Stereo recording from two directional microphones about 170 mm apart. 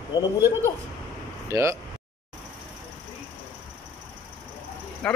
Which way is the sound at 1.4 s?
15° right (ahead or behind).